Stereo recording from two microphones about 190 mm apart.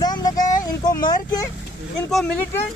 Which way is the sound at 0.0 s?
20° left (ahead or behind).